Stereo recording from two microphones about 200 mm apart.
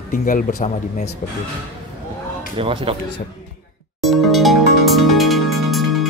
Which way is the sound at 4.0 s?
Centre (ahead or behind).